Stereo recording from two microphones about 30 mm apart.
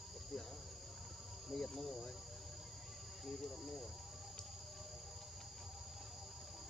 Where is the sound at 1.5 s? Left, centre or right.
Centre.